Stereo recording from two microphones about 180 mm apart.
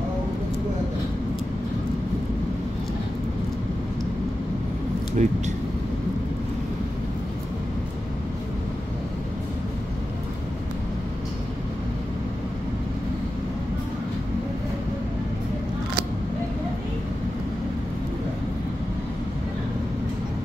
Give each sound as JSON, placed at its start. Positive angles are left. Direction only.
{"t": 5.2, "sound": "speech", "side_deg": -40}